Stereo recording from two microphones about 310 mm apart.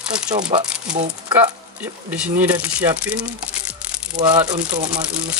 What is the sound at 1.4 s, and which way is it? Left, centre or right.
Speech, centre.